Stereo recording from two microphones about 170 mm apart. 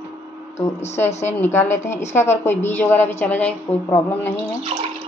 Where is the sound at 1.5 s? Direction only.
15° left (ahead or behind).